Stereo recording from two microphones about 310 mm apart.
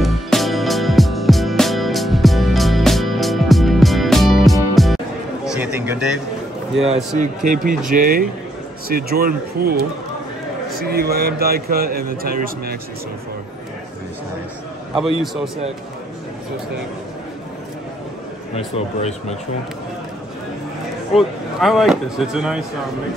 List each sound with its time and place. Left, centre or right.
0.0 s music: centre
5.6 s a sound: centre
7.2 s a man's voice: right
15.0 s speech: centre
18.5 s speech: left
21.5 s speech: centre